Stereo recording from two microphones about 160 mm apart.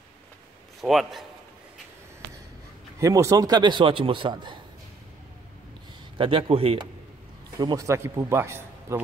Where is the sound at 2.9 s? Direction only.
20° right (ahead or behind).